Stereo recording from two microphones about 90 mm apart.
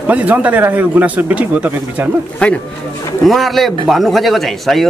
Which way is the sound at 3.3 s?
Centre (ahead or behind).